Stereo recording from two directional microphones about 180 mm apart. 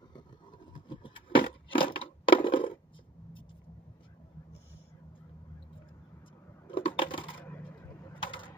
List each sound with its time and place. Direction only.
0.7 s crushing: 25° left (ahead or behind)
6.7 s coin: 30° left (ahead or behind)
7.4 s coin: 10° left (ahead or behind)
8.3 s mechanisms: 25° left (ahead or behind)